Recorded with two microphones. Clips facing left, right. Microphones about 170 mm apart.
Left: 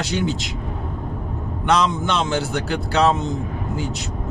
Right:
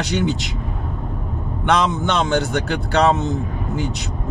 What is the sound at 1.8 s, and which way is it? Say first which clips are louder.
Speech: right 1 dB; 60° right (ahead or behind).